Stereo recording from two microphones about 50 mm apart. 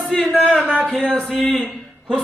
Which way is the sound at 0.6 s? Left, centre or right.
Right.